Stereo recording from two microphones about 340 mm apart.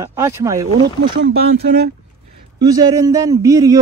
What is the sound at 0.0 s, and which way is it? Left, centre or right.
Speech, centre.